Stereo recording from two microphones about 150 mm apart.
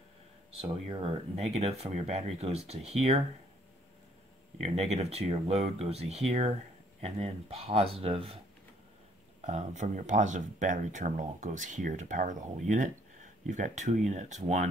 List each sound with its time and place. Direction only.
0.6 s speech: 35° right (ahead or behind)
4.6 s speech: 45° right (ahead or behind)
9.4 s speech: 50° right (ahead or behind)